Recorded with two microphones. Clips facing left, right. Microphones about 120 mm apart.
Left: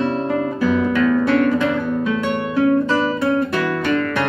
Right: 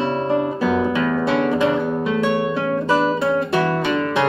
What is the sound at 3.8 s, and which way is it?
Music, 20° right (ahead or behind).